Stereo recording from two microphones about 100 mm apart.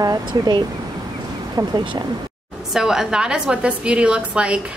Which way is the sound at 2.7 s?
5° right (ahead or behind).